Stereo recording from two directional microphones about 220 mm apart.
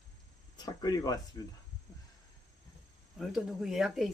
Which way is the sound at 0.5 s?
15° left (ahead or behind).